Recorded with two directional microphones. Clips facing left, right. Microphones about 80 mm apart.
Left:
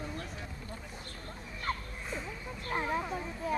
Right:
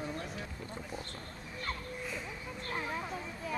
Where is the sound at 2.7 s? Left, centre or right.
Left.